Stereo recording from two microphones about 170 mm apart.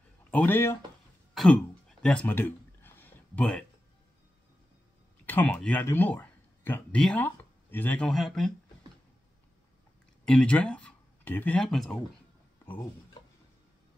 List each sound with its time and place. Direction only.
0.3 s speech: 10° left (ahead or behind)
1.3 s a sound: centre (ahead or behind)
5.2 s speech: 10° left (ahead or behind)
10.2 s speech: 5° left (ahead or behind)